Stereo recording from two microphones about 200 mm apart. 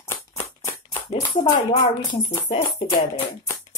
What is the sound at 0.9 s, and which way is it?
Speech, 20° left (ahead or behind).